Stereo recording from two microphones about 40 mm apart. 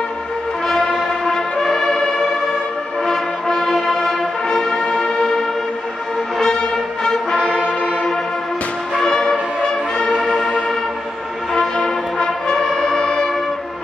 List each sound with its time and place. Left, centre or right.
1.2 s music: centre
3.1 s music: centre
7.5 s brass instrument: right
9.0 s music: centre
11.5 s brass instrument: centre